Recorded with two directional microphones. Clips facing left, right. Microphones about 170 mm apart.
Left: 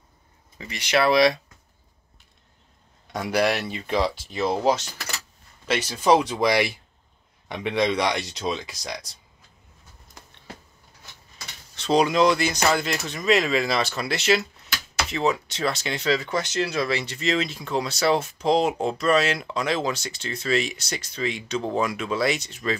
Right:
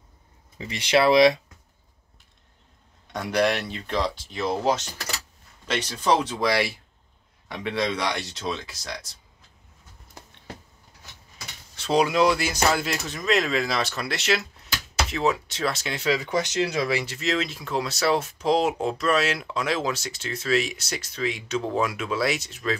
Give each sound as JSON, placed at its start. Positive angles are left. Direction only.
{"t": 0.6, "sound": "speech", "side_deg": -25}
{"t": 3.1, "sound": "speech", "side_deg": 5}
{"t": 11.3, "sound": "vehicle", "side_deg": -5}
{"t": 12.6, "sound": "speech", "side_deg": -5}